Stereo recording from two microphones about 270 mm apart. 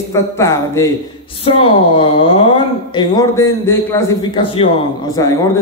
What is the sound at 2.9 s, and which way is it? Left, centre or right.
A man's voice, centre.